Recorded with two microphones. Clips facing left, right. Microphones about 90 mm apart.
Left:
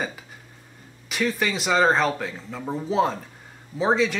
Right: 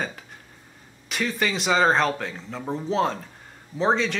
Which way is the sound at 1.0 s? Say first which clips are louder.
Left 1 dB; centre (ahead or behind).